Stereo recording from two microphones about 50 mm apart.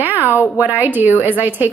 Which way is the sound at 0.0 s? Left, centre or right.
Right.